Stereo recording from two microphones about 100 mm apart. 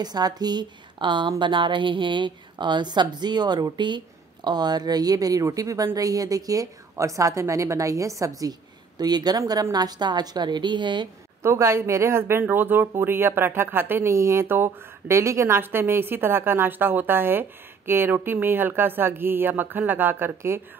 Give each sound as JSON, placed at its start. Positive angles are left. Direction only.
{"t": 0.0, "sound": "a woman's voice", "side_deg": -45}
{"t": 11.4, "sound": "speech", "side_deg": -30}